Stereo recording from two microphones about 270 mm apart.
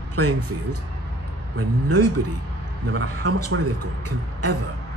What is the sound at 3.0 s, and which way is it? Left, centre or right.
Speech, right.